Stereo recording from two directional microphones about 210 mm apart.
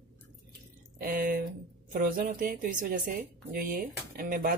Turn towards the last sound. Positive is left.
turn(degrees=-45)  # may be behind; listen again after turning